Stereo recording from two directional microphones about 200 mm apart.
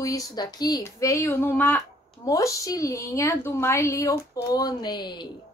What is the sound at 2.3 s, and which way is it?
A woman's voice, 15° left (ahead or behind).